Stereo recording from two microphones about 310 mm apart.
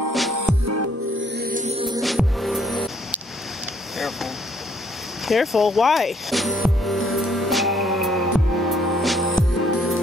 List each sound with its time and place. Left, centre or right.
0.3 s music: right
1.2 s music: right
2.0 s music: centre
5.2 s speech: centre
7.1 s music: centre
9.2 s music: left